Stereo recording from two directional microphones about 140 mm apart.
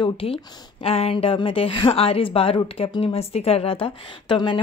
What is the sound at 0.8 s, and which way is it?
A woman's voice, 45° left (ahead or behind).